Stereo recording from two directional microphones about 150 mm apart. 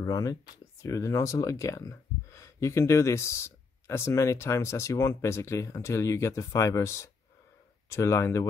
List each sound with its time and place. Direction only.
0.0 s speech: 25° left (ahead or behind)